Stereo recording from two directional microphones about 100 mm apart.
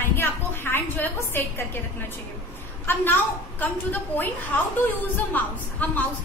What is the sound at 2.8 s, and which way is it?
A woman's voice, 20° left (ahead or behind).